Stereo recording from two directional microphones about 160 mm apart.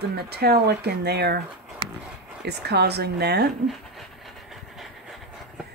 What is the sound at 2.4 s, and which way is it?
Speech, 90° right.